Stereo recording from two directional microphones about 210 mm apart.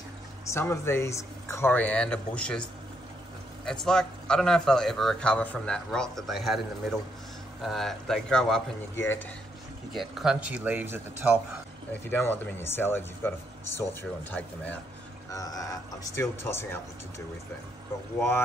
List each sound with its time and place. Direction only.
0.5 s speech: 10° left (ahead or behind)
9.9 s speech: centre (ahead or behind)
11.9 s speech: 10° left (ahead or behind)